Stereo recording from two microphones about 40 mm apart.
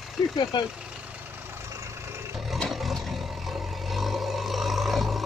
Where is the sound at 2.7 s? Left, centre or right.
Centre.